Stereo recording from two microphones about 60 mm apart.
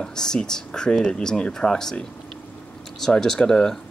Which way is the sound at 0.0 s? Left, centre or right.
Centre.